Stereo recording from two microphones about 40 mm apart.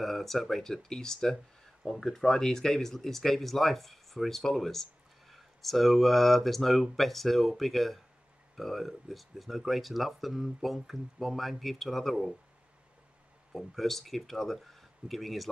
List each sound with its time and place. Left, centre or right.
0.0 s speech: centre
13.5 s speech: centre